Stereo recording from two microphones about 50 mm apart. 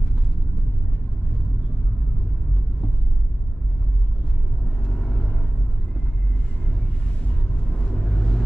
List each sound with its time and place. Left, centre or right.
4.8 s vehicle: centre
7.7 s vehicle: centre